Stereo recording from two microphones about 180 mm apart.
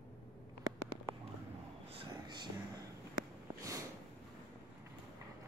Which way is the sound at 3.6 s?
20° right (ahead or behind).